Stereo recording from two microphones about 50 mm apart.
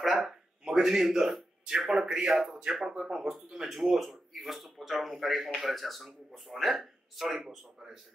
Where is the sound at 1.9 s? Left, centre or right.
Centre.